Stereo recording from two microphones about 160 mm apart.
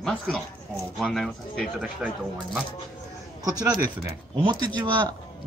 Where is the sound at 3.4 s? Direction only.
20° right (ahead or behind).